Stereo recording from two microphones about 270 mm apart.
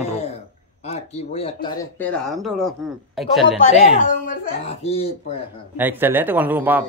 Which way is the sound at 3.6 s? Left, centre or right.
Left.